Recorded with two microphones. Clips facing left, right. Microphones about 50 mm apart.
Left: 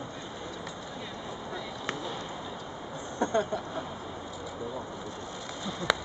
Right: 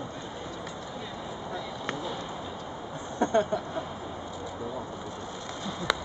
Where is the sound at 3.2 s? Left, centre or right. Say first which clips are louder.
Right 3 dB; right.